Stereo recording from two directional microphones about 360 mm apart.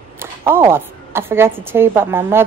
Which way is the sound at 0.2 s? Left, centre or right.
Centre.